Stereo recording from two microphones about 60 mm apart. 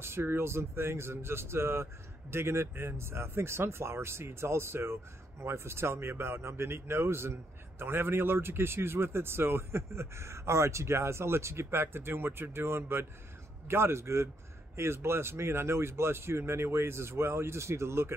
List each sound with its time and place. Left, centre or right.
0.0 s speech: right